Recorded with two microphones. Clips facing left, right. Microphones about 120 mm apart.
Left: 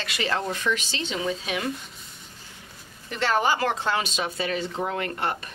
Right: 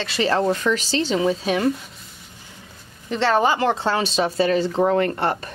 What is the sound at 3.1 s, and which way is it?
A woman's voice, 25° right (ahead or behind).